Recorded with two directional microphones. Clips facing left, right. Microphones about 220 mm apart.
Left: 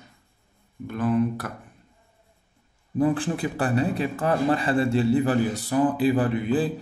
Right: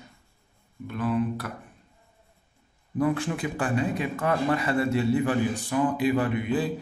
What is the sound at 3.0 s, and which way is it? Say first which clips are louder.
A man's voice: left 3 dB; 30° left (ahead or behind).